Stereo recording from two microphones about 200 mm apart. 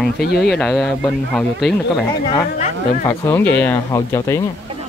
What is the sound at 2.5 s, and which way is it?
Speech, 35° left (ahead or behind).